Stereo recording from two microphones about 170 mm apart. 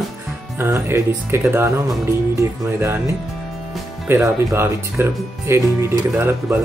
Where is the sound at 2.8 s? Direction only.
15° right (ahead or behind).